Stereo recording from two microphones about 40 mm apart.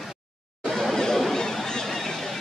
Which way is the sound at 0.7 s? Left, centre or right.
Centre.